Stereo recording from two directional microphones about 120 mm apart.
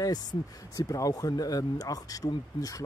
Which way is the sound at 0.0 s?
30° left (ahead or behind).